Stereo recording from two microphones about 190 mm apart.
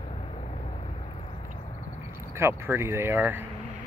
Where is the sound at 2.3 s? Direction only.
15° right (ahead or behind).